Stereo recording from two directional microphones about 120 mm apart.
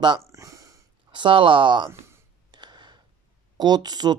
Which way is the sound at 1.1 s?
40° right (ahead or behind).